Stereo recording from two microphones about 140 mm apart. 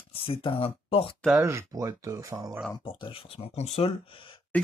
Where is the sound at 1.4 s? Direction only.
20° right (ahead or behind).